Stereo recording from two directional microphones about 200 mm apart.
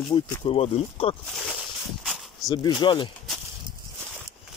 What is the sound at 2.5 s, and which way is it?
Speech, 20° left (ahead or behind).